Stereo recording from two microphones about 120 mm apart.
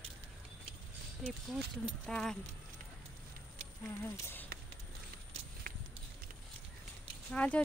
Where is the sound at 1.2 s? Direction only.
5° left (ahead or behind).